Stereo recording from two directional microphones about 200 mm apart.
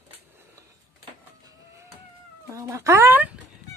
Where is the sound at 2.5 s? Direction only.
15° right (ahead or behind).